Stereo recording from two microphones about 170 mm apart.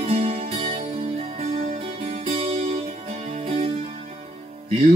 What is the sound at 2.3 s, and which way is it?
Music, 35° right (ahead or behind).